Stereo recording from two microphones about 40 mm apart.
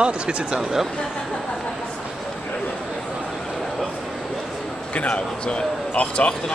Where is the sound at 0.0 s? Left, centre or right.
Right.